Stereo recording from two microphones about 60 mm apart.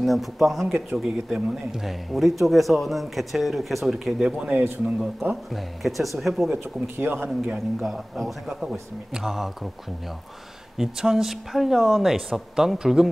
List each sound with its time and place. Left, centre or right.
0.0 s speech: centre
4.3 s speech: centre
5.5 s speech: centre
7.0 s speech: right
7.5 s speech: centre
10.8 s speech: centre